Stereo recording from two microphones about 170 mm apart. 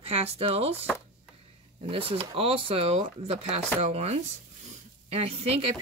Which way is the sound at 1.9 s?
30° right (ahead or behind).